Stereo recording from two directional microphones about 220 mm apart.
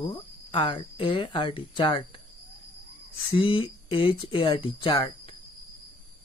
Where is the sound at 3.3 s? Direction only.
25° left (ahead or behind).